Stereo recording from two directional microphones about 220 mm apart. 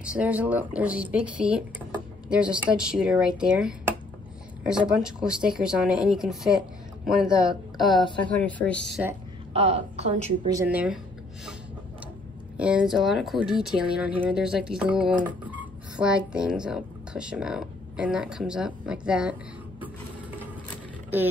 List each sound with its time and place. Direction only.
0.0 s speech: 5° right (ahead or behind)
9.5 s a woman's voice: 30° right (ahead or behind)
10.5 s speech: 10° right (ahead or behind)
12.5 s speech: 5° right (ahead or behind)